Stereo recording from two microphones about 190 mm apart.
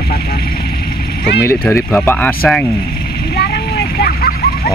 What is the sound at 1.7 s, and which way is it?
Speech, 10° left (ahead or behind).